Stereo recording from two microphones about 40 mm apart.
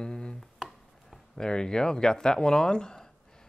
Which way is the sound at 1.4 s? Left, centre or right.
Centre.